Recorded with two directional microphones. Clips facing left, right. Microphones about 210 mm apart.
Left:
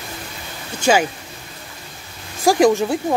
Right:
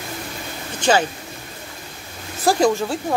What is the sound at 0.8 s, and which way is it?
Speech, 10° left (ahead or behind).